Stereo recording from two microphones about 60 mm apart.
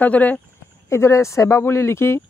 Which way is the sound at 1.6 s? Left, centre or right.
Left.